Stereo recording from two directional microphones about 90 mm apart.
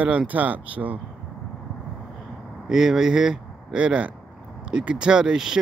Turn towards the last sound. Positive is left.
turn(degrees=-5)  # may be behind; listen again after turning